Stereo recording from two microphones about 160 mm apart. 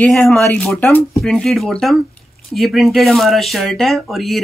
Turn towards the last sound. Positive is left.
turn(degrees=0)  # may be behind; listen again after turning